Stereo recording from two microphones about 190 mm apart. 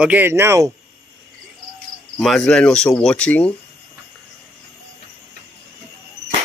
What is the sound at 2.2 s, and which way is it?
Speech, 5° left (ahead or behind).